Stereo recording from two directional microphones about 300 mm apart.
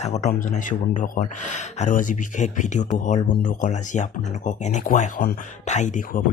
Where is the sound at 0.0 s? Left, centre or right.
Left.